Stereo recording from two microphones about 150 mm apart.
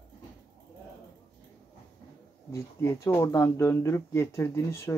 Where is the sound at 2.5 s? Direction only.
20° left (ahead or behind).